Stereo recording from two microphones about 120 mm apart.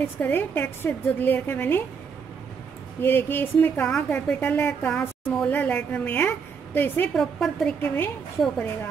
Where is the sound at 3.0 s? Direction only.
15° left (ahead or behind).